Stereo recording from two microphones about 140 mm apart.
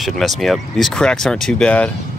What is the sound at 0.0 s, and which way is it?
Speech, centre (ahead or behind).